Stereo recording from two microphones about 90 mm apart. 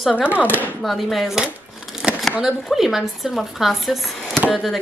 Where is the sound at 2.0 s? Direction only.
10° right (ahead or behind).